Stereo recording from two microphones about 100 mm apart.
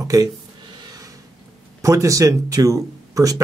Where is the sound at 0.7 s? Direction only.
35° right (ahead or behind).